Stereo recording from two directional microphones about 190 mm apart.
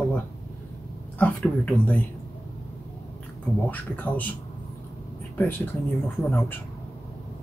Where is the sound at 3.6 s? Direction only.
10° left (ahead or behind).